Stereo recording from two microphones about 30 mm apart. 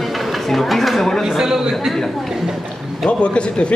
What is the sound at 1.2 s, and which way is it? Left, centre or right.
Speech, centre.